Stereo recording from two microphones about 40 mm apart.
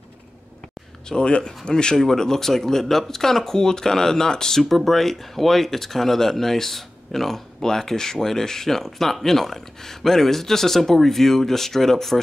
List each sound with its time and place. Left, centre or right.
1.0 s speech: left; by 12.2 s centre